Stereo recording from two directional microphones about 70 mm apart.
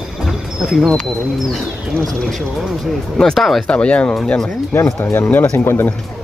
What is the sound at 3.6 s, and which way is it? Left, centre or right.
Speech, centre.